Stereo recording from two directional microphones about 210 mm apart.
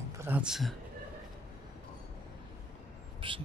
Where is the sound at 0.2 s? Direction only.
5° right (ahead or behind).